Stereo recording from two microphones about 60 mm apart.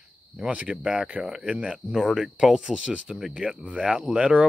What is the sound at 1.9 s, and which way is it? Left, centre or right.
Speech, centre.